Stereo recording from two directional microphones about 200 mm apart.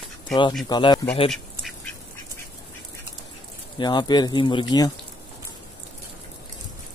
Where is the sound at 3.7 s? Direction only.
20° left (ahead or behind).